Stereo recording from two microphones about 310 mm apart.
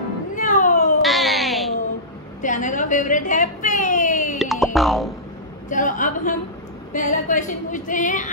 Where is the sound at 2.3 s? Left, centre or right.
Left.